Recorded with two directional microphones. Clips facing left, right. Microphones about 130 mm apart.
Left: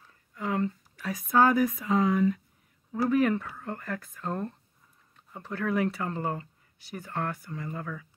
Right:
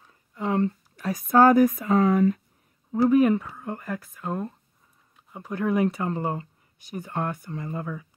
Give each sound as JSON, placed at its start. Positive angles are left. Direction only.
{"t": 0.0, "sound": "a sound", "side_deg": -25}
{"t": 0.9, "sound": "speech", "side_deg": -40}
{"t": 2.9, "sound": "speech", "side_deg": -20}